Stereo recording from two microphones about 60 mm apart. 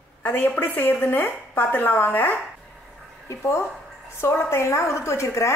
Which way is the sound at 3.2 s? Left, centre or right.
Left.